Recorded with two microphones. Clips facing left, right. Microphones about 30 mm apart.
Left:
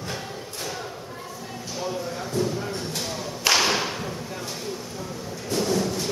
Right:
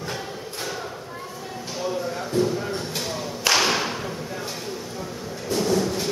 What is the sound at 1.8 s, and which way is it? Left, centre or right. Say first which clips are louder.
Whip: right 3 dB; centre.